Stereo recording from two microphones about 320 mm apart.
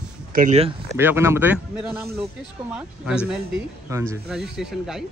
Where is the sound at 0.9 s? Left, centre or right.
Centre.